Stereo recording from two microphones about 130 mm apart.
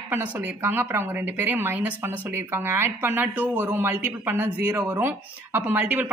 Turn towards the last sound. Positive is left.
turn(degrees=-15)  # may be behind; listen again after turning